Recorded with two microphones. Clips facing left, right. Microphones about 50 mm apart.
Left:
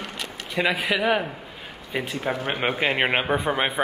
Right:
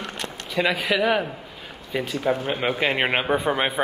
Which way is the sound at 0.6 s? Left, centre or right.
Centre.